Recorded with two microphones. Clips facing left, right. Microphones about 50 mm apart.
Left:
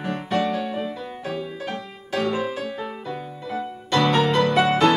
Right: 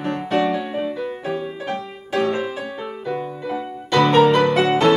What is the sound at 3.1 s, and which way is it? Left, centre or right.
Music, right.